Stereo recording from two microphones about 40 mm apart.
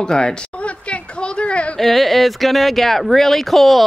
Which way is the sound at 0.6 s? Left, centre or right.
Left.